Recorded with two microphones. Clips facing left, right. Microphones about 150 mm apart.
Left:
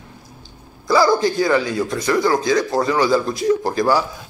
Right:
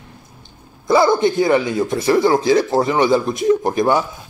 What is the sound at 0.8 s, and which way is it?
A man's voice, 25° right (ahead or behind).